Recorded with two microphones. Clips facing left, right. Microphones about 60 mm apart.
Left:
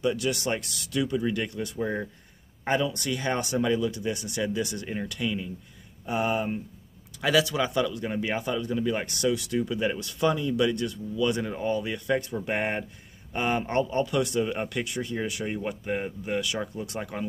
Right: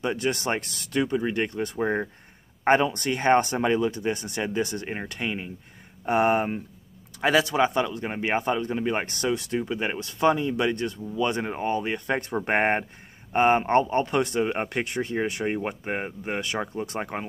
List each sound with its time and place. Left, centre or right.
0.0 s a man's voice: right
6.0 s speech: right
7.2 s a man's voice: right